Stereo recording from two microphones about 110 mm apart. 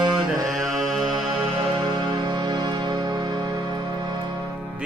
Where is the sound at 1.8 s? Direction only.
45° right (ahead or behind).